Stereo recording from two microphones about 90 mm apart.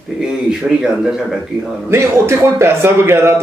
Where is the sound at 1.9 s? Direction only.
30° right (ahead or behind).